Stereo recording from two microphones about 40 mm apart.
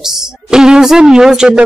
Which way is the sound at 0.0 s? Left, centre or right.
Centre.